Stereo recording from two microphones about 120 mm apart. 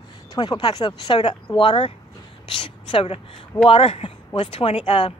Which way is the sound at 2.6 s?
45° left (ahead or behind).